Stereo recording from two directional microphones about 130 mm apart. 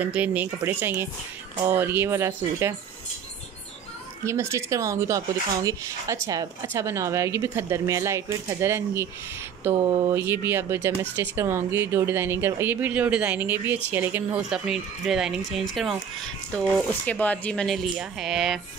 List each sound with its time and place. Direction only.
0.0 s speech: 10° right (ahead or behind)
4.3 s speech: 20° right (ahead or behind)
14.5 s speech: 5° right (ahead or behind)
17.0 s speech: 10° left (ahead or behind)